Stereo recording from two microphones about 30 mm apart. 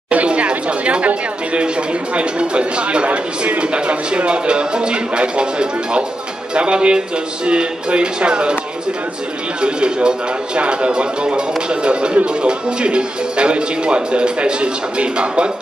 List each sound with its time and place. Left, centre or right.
0.1 s chatter: right
1.6 s speech: right
9.6 s speech: right